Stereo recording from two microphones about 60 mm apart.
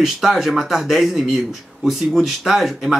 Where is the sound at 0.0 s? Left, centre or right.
Centre.